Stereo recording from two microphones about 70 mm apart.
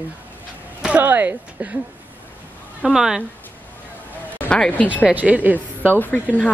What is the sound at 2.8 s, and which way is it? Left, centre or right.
Speech, centre.